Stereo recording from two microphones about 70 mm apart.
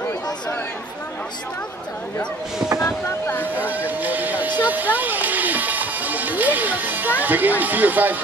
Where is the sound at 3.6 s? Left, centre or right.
Right.